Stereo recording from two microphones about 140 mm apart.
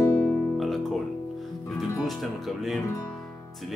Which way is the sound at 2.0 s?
Centre (ahead or behind).